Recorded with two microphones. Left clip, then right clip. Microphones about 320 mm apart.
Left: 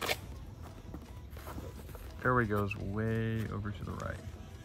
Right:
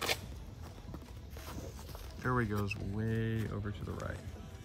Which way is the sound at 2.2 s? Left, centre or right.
Centre.